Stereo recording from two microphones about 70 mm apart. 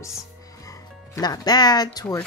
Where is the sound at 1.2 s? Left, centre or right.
Left.